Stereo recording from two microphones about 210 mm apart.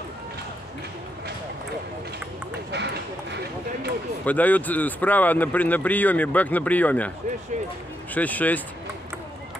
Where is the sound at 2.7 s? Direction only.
55° right (ahead or behind).